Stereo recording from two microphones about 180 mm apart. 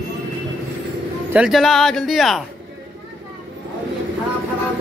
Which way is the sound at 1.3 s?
5° right (ahead or behind).